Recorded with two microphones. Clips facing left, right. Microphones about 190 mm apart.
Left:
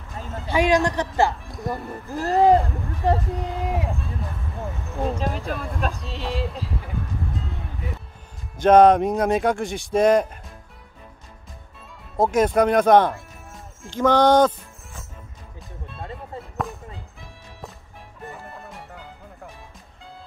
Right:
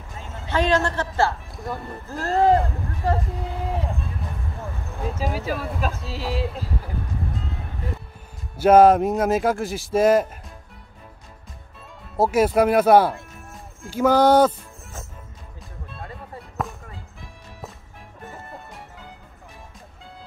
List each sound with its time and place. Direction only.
0.5 s speech: 15° left (ahead or behind)
1.5 s speech: centre (ahead or behind)
2.0 s speech: 15° left (ahead or behind)
5.1 s speech: 5° right (ahead or behind)
8.5 s speech: 5° right (ahead or behind)
12.2 s speech: 5° right (ahead or behind)